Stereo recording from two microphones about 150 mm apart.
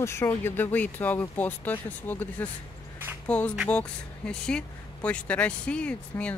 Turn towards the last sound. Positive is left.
turn(degrees=5)  # may be behind; listen again after turning